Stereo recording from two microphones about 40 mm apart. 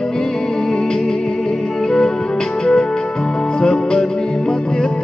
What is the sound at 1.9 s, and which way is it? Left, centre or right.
Music, centre.